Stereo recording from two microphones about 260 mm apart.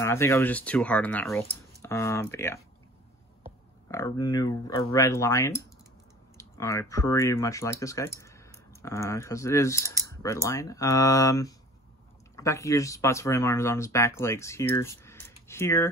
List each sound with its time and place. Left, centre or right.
0.0 s speech: centre
3.9 s speech: centre